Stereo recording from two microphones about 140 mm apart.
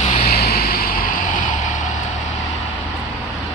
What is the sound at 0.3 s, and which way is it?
Vehicle, 90° left.